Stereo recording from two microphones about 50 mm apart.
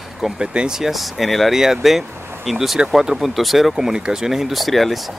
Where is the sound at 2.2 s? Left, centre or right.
Right.